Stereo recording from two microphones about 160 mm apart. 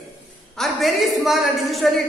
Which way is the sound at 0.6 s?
Centre (ahead or behind).